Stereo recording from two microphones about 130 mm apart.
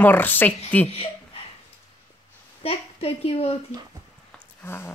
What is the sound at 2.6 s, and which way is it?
Speech, 50° left (ahead or behind).